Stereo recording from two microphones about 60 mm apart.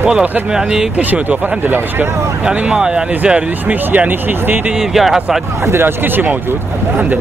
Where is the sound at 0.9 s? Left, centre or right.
Right.